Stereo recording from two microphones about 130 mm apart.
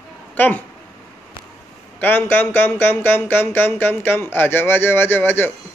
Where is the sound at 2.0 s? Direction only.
15° left (ahead or behind).